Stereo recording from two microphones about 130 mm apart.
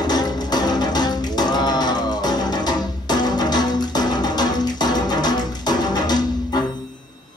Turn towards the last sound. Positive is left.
turn(degrees=30)  # may be behind; listen again after turning